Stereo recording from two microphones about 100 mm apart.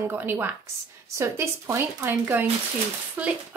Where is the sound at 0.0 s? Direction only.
20° right (ahead or behind).